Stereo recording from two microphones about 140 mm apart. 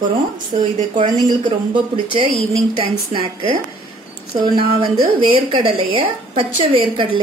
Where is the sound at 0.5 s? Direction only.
55° right (ahead or behind).